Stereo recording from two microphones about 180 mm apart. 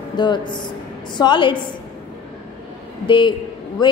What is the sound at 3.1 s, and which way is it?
Speech, 25° left (ahead or behind).